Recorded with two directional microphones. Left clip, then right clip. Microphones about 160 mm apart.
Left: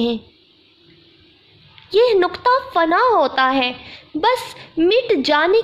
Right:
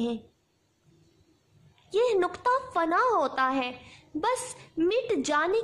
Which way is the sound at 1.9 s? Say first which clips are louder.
Left 11 dB; 15° left (ahead or behind).